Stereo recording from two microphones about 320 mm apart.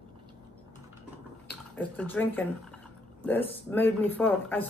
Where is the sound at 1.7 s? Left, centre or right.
Centre.